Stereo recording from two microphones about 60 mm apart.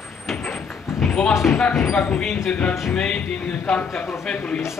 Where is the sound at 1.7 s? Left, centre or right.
Centre.